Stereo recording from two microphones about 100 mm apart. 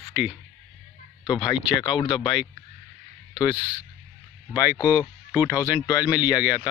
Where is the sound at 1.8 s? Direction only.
55° left (ahead or behind).